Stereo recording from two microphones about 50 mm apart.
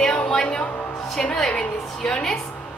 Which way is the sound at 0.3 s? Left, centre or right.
Centre.